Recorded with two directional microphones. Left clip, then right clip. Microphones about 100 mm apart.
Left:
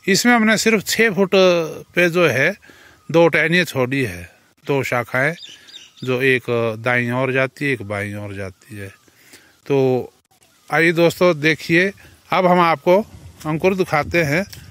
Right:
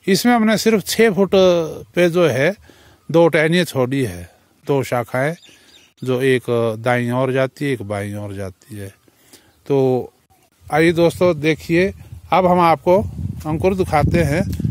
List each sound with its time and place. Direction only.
0.0 s speech: 30° right (ahead or behind)
9.7 s a man's voice: 25° right (ahead or behind)